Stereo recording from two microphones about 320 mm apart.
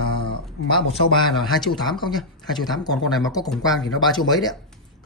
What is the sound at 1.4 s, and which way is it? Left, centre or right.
Speech, centre.